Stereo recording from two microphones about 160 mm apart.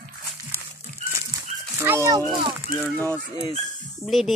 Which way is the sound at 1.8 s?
20° right (ahead or behind).